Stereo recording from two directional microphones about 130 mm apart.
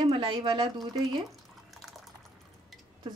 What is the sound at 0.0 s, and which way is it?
Speech, 45° right (ahead or behind).